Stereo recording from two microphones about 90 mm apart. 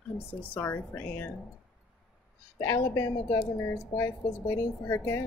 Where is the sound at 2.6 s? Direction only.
35° left (ahead or behind).